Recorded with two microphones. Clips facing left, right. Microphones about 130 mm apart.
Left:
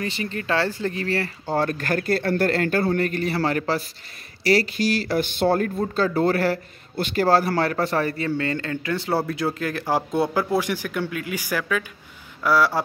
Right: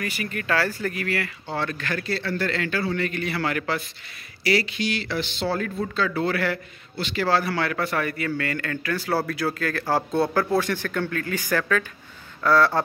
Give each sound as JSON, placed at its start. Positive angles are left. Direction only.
{"t": 0.0, "sound": "speech", "side_deg": 25}
{"t": 5.9, "sound": "a man's voice", "side_deg": 40}